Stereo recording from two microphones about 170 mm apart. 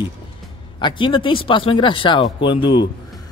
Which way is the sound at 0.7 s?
30° left (ahead or behind).